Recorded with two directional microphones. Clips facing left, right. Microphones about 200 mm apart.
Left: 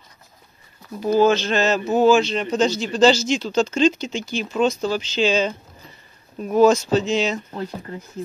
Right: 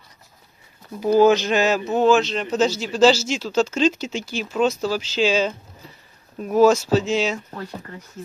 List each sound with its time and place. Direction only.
1.0 s speech: 15° right (ahead or behind)
1.9 s speech: centre (ahead or behind)
7.5 s speech: 25° left (ahead or behind)